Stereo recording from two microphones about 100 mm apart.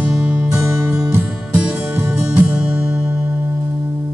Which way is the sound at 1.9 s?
15° right (ahead or behind).